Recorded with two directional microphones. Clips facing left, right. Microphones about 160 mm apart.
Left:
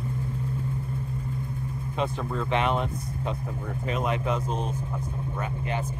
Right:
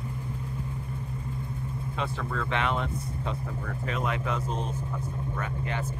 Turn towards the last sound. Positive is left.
turn(degrees=15)  # may be behind; listen again after turning